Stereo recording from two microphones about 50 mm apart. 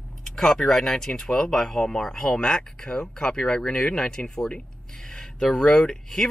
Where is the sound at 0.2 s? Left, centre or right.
Centre.